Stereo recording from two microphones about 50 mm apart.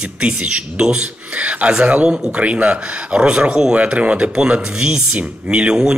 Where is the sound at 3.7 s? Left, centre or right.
Right.